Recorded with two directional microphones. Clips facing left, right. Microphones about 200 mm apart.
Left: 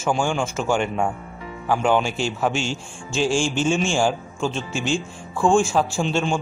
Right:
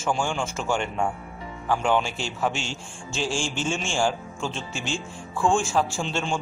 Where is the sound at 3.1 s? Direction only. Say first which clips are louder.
Left 7 dB; 15° left (ahead or behind).